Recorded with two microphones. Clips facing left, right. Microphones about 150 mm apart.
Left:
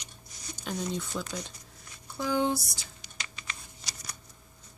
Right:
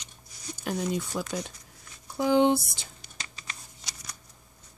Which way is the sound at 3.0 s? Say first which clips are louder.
Left 1 dB; 40° right (ahead or behind).